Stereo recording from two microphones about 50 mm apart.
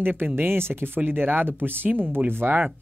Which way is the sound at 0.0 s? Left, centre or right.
Right.